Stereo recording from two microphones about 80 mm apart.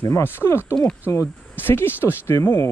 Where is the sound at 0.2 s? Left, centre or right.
Left.